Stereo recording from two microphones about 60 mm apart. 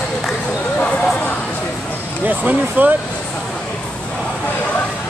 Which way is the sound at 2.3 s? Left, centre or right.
Right.